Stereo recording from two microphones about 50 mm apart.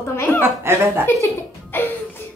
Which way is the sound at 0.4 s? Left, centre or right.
Right.